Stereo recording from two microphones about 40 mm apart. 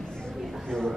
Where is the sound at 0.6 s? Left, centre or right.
Centre.